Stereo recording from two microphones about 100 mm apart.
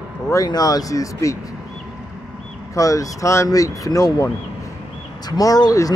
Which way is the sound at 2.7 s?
35° left (ahead or behind).